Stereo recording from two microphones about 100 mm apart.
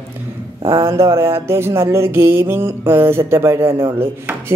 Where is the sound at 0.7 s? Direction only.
30° right (ahead or behind).